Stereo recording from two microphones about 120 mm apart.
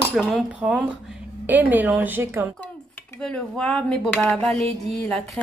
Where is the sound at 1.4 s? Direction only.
15° right (ahead or behind).